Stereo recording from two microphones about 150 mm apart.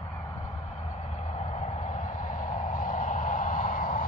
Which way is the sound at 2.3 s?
60° left (ahead or behind).